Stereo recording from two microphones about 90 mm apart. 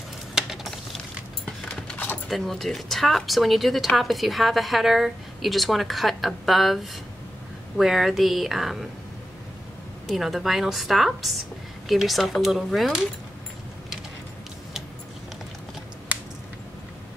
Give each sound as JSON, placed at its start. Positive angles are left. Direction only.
{"t": 0.3, "sound": "a sound", "side_deg": 0}
{"t": 2.2, "sound": "speech", "side_deg": 5}
{"t": 10.0, "sound": "speech", "side_deg": 0}